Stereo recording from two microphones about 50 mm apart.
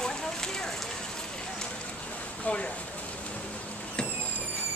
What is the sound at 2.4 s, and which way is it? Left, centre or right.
Speech, left.